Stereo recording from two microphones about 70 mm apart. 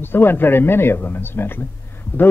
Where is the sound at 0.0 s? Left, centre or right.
Left.